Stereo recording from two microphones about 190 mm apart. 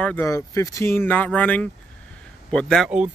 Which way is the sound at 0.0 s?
10° left (ahead or behind).